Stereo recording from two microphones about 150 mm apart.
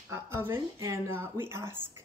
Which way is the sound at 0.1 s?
15° right (ahead or behind).